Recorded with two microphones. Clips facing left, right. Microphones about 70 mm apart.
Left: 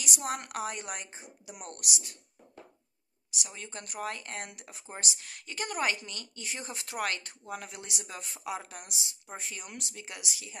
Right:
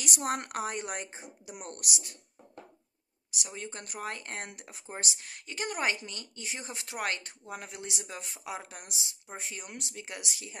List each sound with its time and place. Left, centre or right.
0.0 s a woman's voice: right
3.4 s a woman's voice: right